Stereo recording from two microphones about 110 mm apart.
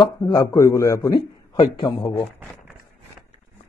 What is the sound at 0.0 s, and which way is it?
A man's voice, 40° left (ahead or behind).